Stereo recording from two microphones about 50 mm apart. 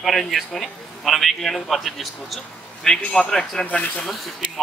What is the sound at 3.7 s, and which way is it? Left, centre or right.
Speech, left.